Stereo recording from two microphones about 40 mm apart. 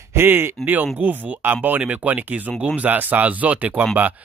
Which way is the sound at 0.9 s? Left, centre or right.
Right.